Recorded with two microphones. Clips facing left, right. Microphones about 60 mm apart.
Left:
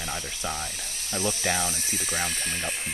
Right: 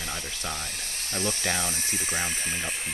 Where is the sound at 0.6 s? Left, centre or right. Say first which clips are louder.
Even; right.